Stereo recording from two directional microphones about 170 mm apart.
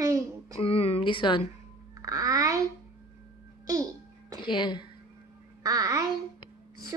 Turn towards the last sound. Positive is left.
turn(degrees=-20)  # may be behind; listen again after turning